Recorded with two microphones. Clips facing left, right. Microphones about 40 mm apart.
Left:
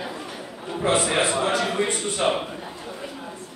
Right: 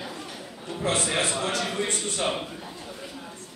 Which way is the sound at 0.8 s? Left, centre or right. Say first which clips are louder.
Left 5 dB; centre.